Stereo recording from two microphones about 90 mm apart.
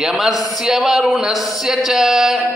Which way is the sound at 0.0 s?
5° right (ahead or behind).